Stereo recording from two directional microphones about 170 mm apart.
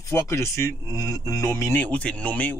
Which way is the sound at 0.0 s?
15° left (ahead or behind).